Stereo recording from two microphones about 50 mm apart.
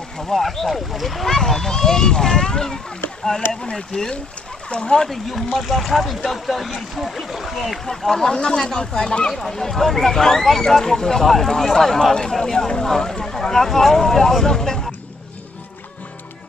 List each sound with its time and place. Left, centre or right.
0.3 s speech: centre
9.3 s speech: centre